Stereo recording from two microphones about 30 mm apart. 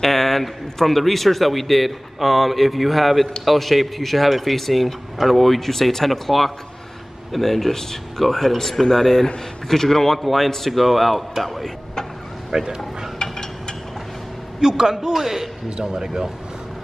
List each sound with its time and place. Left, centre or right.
0.0 s a man's voice: centre
12.4 s a sound: centre
13.2 s a sound: left
14.6 s a man's voice: right
15.1 s a man's voice: centre
15.8 s a man's voice: right